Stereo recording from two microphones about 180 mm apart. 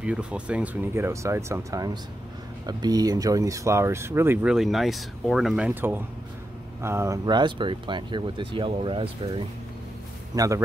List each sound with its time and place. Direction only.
0.0 s speech: 5° right (ahead or behind); by 9.4 s 30° right (ahead or behind)
10.3 s speech: 20° right (ahead or behind)